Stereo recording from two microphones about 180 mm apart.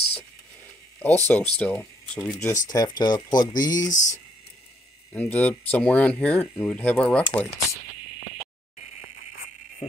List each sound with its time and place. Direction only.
1.0 s speech: 10° left (ahead or behind)
2.7 s speech: 20° left (ahead or behind)
3.9 s speech: 45° left (ahead or behind)
5.1 s speech: 10° left (ahead or behind)